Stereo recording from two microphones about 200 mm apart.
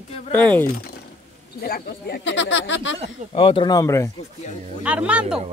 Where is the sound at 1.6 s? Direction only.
50° left (ahead or behind); by 3.0 s 65° left (ahead or behind).